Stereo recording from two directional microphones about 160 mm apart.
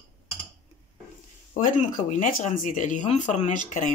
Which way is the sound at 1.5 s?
50° left (ahead or behind).